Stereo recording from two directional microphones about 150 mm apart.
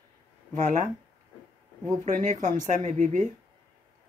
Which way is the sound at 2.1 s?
60° right (ahead or behind).